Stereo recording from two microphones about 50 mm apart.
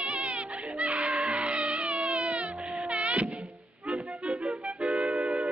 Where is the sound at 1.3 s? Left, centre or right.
Right.